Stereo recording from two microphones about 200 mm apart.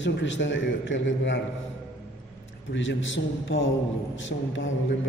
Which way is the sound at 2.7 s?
70° left (ahead or behind).